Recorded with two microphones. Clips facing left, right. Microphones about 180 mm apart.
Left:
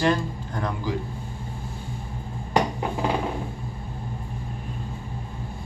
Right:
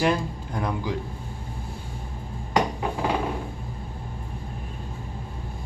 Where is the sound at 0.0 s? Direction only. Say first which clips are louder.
Left 1 dB; 10° right (ahead or behind).